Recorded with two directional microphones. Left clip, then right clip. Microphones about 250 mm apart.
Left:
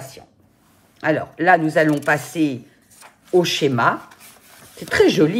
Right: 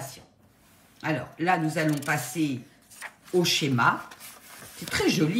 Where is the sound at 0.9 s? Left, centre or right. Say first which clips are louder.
Left 10 dB; centre.